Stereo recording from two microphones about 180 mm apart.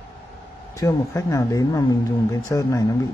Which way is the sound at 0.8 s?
20° left (ahead or behind).